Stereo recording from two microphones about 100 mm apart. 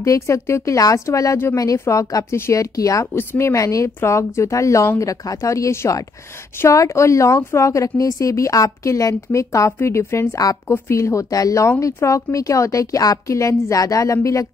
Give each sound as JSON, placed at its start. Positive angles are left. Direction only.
{"t": 0.0, "sound": "speech", "side_deg": 30}
{"t": 3.1, "sound": "speech", "side_deg": 25}